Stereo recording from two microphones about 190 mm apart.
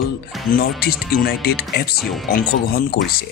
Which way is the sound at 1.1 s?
55° left (ahead or behind).